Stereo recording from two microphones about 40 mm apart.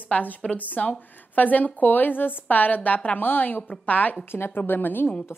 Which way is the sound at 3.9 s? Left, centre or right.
Left.